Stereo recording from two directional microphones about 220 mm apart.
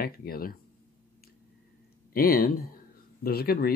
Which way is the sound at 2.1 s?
45° left (ahead or behind).